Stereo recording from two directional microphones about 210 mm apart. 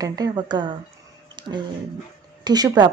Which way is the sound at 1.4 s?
20° right (ahead or behind).